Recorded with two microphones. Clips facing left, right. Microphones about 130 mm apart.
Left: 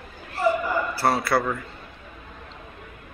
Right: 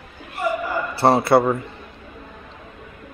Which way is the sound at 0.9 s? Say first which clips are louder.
Right 9 dB; 25° right (ahead or behind).